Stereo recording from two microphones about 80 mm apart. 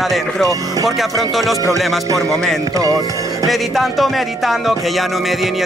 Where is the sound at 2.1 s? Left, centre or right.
Right.